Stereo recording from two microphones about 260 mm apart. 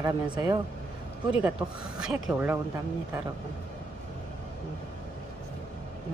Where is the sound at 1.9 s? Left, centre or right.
Centre.